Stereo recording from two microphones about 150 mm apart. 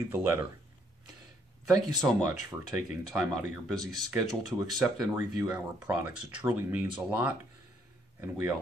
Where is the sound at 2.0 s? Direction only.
15° right (ahead or behind).